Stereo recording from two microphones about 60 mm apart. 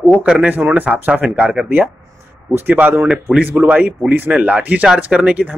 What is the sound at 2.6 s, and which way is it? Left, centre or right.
Speech, right.